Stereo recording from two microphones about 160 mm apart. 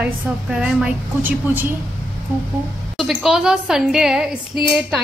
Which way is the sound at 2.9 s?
Centre (ahead or behind).